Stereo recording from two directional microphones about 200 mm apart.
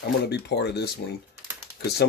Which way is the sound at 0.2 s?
55° left (ahead or behind).